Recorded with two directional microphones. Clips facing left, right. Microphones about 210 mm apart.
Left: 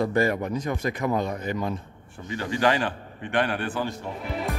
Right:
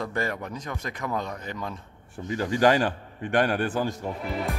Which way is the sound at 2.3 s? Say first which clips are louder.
Right 2 dB; 40° right (ahead or behind).